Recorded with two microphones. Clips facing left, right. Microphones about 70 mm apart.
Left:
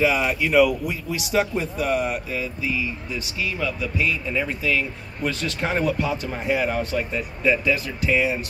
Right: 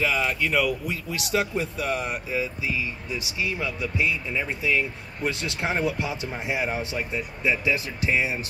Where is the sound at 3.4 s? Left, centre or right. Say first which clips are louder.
Left 2 dB; right.